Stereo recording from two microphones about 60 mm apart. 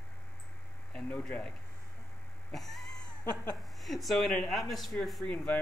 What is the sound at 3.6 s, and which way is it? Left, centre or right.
A man's voice, centre.